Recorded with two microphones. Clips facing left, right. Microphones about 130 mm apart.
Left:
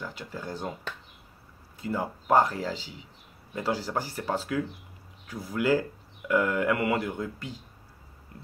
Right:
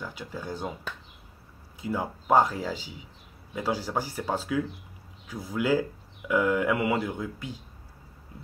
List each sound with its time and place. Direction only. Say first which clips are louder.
0.0 s speech: even; centre (ahead or behind)